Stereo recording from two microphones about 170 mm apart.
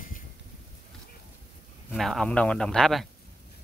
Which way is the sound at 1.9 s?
Centre (ahead or behind).